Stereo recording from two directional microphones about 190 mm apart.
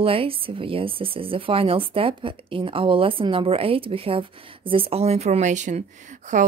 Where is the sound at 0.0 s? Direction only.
30° right (ahead or behind).